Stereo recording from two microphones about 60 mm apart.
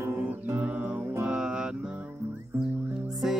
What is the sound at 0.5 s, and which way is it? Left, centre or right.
Music, right.